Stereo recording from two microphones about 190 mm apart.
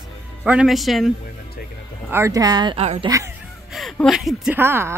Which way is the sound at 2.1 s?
15° right (ahead or behind).